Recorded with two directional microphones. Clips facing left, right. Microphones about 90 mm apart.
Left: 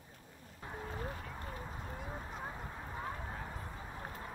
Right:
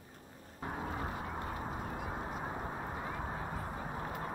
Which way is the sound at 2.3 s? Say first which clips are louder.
Right 5 dB; 40° right (ahead or behind).